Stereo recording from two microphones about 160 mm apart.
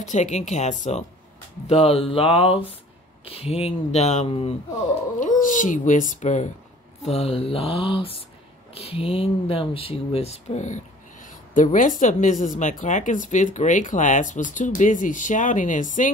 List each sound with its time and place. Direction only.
0.0 s speech: 45° left (ahead or behind)
5.2 s speech: 55° left (ahead or behind)
11.2 s a sound: 55° left (ahead or behind)
12.0 s speech: 50° left (ahead or behind)